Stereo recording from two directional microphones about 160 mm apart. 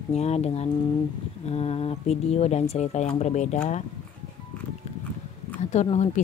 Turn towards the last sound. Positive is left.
turn(degrees=40)  # may be behind; listen again after turning